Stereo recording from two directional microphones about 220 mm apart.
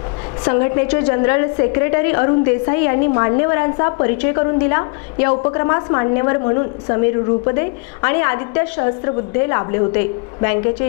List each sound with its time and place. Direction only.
0.8 s a woman's voice: 20° left (ahead or behind)